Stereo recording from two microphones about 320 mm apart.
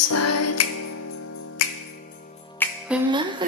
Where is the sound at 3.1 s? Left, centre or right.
Centre.